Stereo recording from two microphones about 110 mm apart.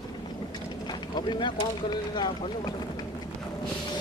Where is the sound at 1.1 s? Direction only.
40° left (ahead or behind).